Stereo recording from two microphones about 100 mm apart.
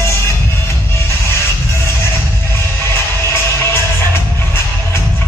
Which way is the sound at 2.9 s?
25° left (ahead or behind).